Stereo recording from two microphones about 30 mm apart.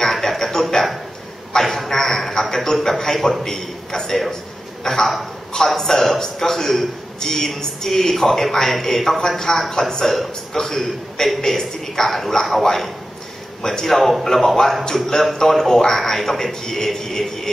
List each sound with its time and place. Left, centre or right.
0.0 s a sound: centre
2.5 s a woman's voice: centre
15.3 s a man's voice: centre